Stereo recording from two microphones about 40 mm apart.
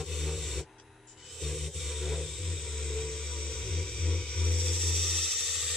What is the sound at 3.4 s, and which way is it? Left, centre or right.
Music, centre.